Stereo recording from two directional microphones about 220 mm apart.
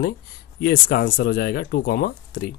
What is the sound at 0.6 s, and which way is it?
Speech, 45° left (ahead or behind).